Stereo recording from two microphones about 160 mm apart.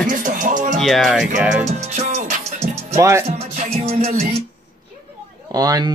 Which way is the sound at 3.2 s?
40° right (ahead or behind).